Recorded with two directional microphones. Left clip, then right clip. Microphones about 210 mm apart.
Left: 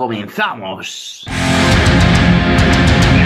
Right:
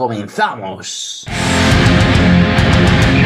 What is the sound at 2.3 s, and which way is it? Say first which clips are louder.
Music: left 1 dB; centre (ahead or behind).